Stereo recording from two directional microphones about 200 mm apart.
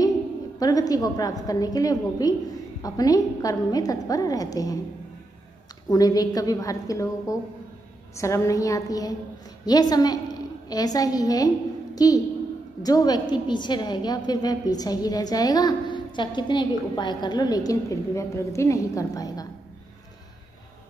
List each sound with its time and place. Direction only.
0.6 s a woman's voice: 20° left (ahead or behind)
5.9 s a woman's voice: 20° left (ahead or behind)